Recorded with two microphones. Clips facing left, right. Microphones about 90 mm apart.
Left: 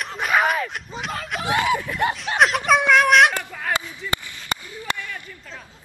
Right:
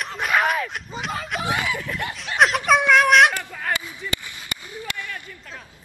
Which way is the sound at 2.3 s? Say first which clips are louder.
Right 1 dB; centre (ahead or behind).